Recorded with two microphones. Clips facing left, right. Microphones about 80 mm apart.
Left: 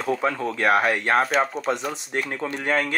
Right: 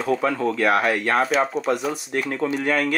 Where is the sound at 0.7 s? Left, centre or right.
Centre.